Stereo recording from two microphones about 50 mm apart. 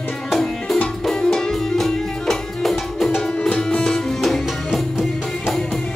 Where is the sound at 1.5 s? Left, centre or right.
Centre.